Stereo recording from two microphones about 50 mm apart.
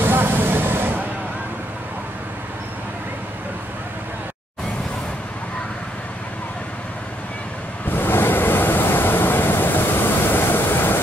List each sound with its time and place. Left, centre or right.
0.0 s music: right
7.9 s waves: left